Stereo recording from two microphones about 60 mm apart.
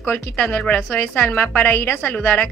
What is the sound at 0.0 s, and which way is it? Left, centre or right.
A woman's voice, left.